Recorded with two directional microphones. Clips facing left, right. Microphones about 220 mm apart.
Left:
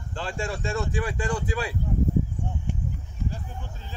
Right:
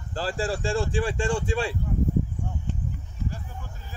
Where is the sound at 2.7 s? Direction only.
10° left (ahead or behind).